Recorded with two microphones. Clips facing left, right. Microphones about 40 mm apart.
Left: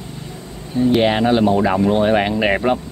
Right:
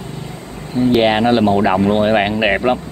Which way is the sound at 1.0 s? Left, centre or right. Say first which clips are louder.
Right 3 dB; centre.